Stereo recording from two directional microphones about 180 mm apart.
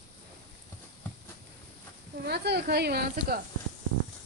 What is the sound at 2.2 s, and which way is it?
Speech, 65° right (ahead or behind).